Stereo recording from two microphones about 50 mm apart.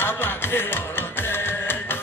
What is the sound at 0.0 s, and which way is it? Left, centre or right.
Music, left.